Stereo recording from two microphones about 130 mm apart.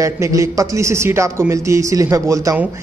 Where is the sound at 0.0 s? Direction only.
25° right (ahead or behind).